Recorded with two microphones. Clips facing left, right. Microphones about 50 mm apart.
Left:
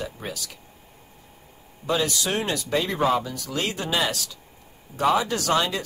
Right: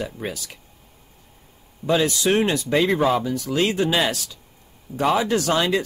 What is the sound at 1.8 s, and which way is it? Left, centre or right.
Speech, right.